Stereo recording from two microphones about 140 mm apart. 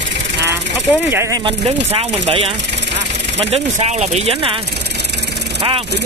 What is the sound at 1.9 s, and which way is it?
Speech, 40° right (ahead or behind).